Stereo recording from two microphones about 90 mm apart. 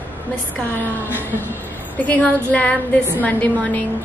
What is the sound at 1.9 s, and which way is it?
A woman's voice, 15° left (ahead or behind).